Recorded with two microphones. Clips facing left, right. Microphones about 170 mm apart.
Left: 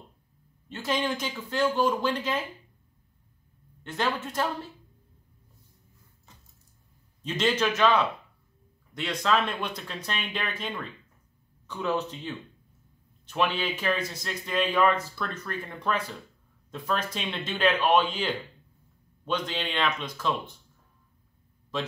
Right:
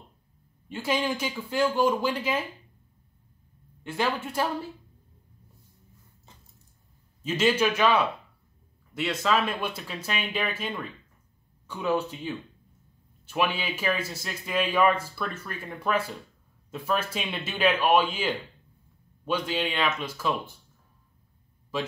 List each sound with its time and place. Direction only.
0.7 s speech: 10° right (ahead or behind)
3.8 s speech: 10° right (ahead or behind)
7.2 s speech: 10° right (ahead or behind)
21.7 s speech: 10° right (ahead or behind)